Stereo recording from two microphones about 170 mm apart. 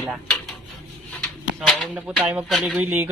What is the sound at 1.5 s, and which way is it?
Speech, 5° right (ahead or behind).